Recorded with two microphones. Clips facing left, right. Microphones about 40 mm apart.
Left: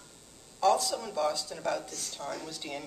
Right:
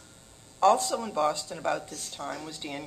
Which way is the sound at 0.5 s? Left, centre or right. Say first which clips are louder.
Right 4 dB; right.